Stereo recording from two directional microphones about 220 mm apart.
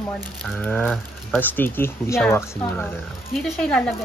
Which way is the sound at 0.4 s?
5° left (ahead or behind).